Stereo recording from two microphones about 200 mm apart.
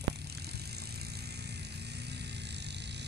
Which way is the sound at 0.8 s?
55° right (ahead or behind).